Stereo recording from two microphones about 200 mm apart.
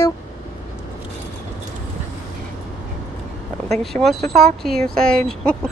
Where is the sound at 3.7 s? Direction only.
Centre (ahead or behind).